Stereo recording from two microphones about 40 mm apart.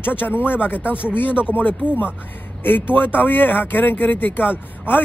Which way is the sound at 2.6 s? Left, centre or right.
Left.